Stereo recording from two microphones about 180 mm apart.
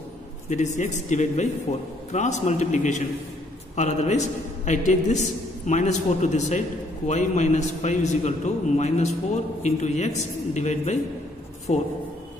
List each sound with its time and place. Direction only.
0.5 s a man's voice: 40° left (ahead or behind)